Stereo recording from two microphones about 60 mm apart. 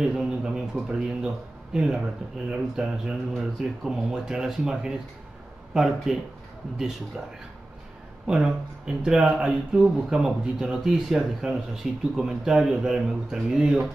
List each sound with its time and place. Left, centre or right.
0.0 s a sound: centre
0.8 s speech: centre
7.2 s speech: centre